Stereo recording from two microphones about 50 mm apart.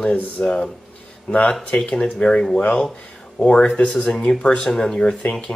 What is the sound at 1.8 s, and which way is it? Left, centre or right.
Speech, centre.